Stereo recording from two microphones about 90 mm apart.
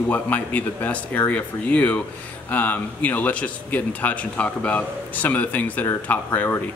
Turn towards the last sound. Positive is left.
turn(degrees=20)  # may be behind; listen again after turning